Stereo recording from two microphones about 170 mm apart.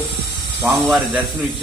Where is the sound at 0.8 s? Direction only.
10° right (ahead or behind).